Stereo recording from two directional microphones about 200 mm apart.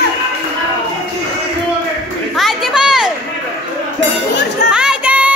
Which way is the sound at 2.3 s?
Centre (ahead or behind).